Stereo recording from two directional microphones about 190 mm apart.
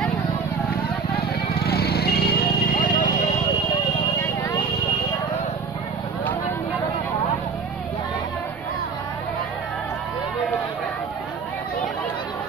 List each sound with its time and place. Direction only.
1.5 s vehicle: 55° left (ahead or behind); by 3.5 s 40° left (ahead or behind)
4.2 s vehicle: 15° left (ahead or behind)